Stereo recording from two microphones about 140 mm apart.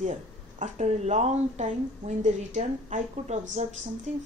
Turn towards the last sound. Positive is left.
turn(degrees=-55)  # may be behind; listen again after turning